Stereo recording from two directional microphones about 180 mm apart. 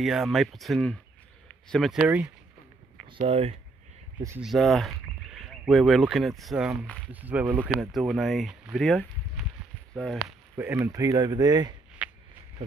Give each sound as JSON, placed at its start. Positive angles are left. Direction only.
{"t": 0.0, "sound": "speech", "side_deg": 0}
{"t": 3.3, "sound": "speech", "side_deg": -35}
{"t": 4.4, "sound": "speech", "side_deg": 0}
{"t": 8.7, "sound": "a sound", "side_deg": 0}
{"t": 9.9, "sound": "speech", "side_deg": 0}
{"t": 10.6, "sound": "speech", "side_deg": -15}